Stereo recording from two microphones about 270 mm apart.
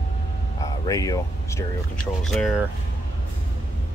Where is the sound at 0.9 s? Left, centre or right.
Centre.